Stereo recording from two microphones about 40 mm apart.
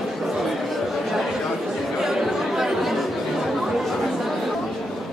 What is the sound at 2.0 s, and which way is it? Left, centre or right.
Chatter, centre.